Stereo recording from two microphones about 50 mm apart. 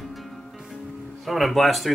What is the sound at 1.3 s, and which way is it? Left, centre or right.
Speech, centre.